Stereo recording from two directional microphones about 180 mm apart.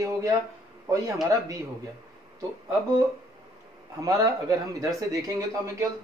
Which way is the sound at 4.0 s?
20° right (ahead or behind).